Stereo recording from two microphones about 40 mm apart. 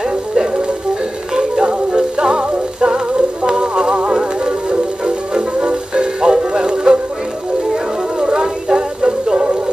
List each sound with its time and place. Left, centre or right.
0.1 s music: right